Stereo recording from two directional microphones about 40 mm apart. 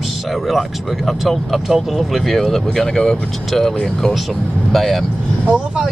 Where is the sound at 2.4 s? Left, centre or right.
Centre.